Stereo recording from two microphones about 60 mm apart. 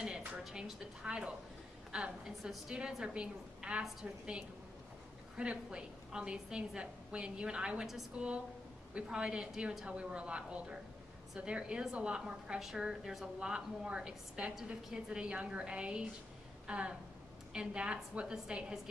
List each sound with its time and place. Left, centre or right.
0.4 s a woman's voice: centre
12.5 s a woman's voice: centre